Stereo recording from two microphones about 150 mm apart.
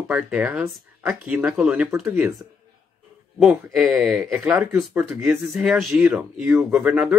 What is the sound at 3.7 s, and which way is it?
Speech, 5° right (ahead or behind).